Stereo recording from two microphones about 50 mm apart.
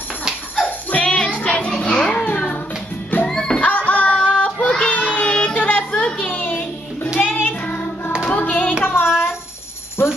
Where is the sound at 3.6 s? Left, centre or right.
Left.